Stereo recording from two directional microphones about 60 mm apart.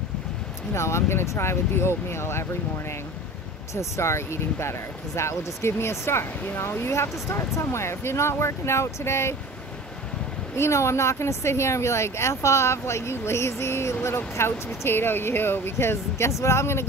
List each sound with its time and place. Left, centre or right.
0.7 s speech: left
3.7 s speech: left
10.5 s speech: left